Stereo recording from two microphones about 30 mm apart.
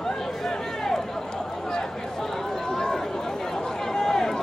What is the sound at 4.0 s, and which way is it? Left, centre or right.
Run, centre.